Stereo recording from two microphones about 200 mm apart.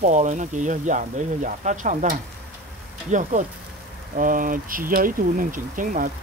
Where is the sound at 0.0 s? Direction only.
35° right (ahead or behind).